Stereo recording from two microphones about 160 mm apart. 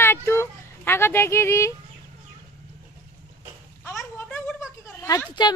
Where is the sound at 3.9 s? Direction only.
5° left (ahead or behind).